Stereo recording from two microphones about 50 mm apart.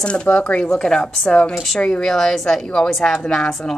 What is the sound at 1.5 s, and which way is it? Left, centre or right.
Speech, centre.